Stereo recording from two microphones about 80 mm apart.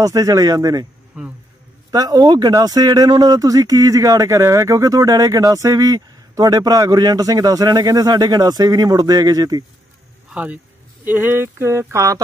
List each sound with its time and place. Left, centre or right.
0.0 s speech: right
1.1 s speech: centre
1.9 s speech: right
10.3 s speech: centre; by 12.2 s right